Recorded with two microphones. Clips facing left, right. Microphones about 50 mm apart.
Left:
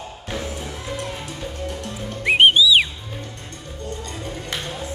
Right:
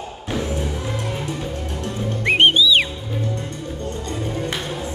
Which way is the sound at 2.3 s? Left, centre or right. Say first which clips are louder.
Left 1 dB; centre.